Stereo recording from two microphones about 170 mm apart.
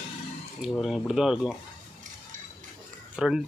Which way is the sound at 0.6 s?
Centre (ahead or behind).